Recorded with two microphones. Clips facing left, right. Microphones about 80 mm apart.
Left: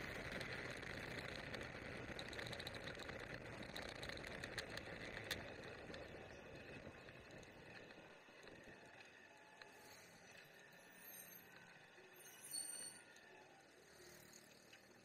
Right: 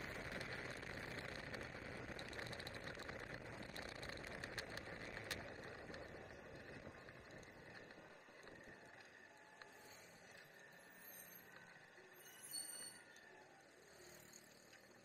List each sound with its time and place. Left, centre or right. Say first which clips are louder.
0.0 s vehicle: even; centre